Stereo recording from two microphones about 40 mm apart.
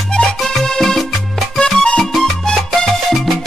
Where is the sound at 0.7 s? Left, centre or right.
Centre.